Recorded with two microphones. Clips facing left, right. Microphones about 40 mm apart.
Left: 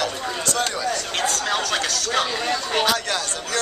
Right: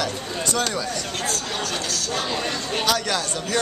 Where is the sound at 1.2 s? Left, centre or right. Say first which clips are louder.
Left 6 dB; left.